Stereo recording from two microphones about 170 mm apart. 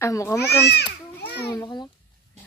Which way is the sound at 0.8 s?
75° left (ahead or behind).